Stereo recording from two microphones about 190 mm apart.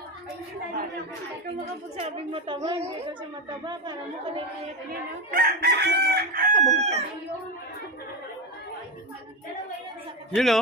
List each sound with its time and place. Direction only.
2.0 s a woman's voice: 35° right (ahead or behind)
5.3 s chicken: 55° right (ahead or behind)
10.3 s a man's voice: centre (ahead or behind)